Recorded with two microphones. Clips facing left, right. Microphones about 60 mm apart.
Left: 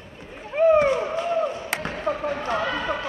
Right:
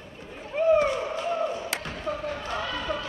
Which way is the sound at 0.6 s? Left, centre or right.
Left.